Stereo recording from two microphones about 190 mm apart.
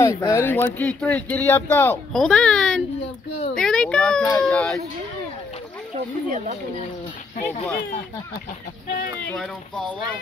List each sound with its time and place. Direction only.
0.0 s speech: 20° left (ahead or behind)
6.3 s speech: 40° right (ahead or behind)
7.4 s speech: 10° left (ahead or behind)
8.8 s speech: 50° left (ahead or behind)